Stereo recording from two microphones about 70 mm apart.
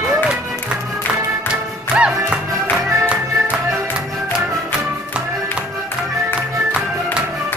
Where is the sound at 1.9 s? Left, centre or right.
Centre.